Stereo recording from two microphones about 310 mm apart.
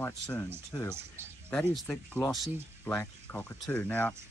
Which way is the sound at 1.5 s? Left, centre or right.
Centre.